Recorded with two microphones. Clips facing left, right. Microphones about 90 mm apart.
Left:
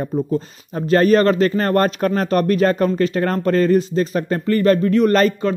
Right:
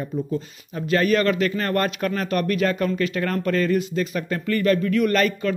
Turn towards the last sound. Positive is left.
turn(degrees=35)  # may be behind; listen again after turning